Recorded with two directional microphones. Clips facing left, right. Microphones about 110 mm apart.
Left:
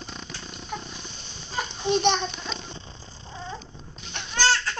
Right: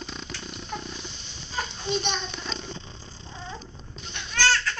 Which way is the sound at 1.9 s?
50° left (ahead or behind).